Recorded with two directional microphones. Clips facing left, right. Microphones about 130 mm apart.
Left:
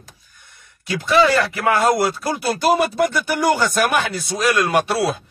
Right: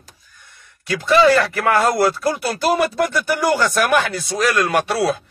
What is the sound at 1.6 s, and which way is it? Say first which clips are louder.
Speech: left 2 dB; 20° left (ahead or behind).